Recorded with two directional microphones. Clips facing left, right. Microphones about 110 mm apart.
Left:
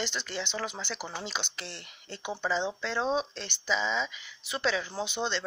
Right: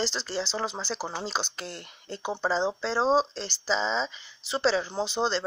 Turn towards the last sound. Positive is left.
turn(degrees=-35)  # may be behind; listen again after turning